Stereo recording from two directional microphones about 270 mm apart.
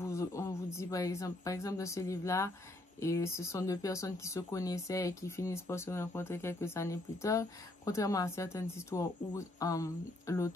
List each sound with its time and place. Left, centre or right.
0.0 s speech: centre